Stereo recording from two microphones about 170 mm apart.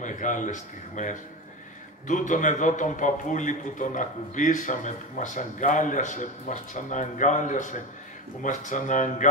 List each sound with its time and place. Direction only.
0.0 s a man's voice: 50° left (ahead or behind)